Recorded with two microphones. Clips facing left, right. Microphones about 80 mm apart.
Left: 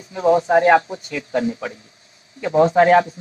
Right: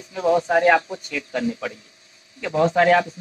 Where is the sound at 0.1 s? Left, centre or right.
Left.